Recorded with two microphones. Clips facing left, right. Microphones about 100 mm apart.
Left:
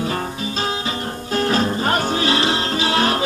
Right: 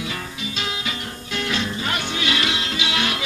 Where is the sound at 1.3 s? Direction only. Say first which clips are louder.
Left 7 dB; 40° left (ahead or behind).